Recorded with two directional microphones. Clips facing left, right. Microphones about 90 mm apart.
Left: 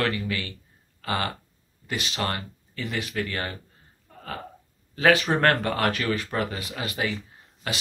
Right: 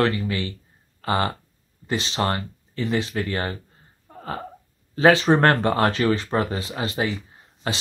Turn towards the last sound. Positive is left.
turn(degrees=-30)  # may be behind; listen again after turning